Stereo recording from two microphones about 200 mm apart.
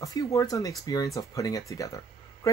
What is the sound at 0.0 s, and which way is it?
Speech, 15° left (ahead or behind).